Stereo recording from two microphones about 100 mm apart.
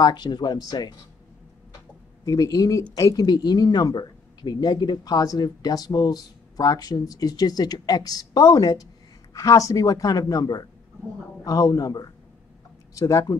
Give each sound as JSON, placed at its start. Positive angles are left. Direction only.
{"t": 0.0, "sound": "speech", "side_deg": 50}
{"t": 2.2, "sound": "speech", "side_deg": 35}